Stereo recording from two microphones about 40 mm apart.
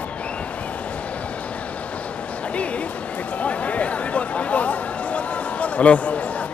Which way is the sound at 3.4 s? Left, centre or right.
Left.